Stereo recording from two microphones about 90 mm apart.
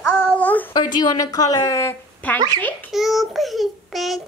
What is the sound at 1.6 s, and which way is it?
Speech, 35° left (ahead or behind).